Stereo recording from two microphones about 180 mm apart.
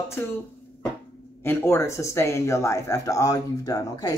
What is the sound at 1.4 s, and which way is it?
A man's voice, 15° left (ahead or behind).